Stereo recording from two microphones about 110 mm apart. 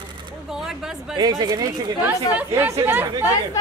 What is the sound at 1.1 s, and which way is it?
Speech, 35° right (ahead or behind).